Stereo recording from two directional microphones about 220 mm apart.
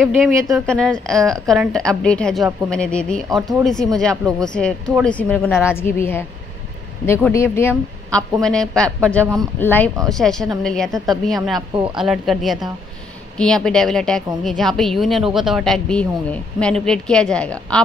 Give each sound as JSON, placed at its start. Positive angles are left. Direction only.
{"t": 0.0, "sound": "a woman's voice", "side_deg": 0}
{"t": 7.1, "sound": "a woman's voice", "side_deg": 10}
{"t": 11.7, "sound": "speech", "side_deg": -20}
{"t": 12.0, "sound": "speech", "side_deg": 0}